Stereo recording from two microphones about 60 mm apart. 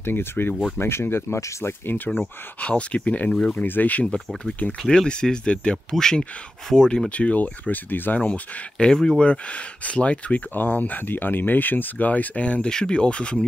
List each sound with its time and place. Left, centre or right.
0.0 s speech: left
2.1 s speech: centre
3.6 s speech: left
8.2 s speech: centre
10.5 s speech: left